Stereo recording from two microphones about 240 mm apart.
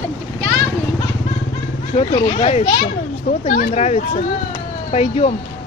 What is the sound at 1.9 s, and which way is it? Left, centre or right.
Speech, left.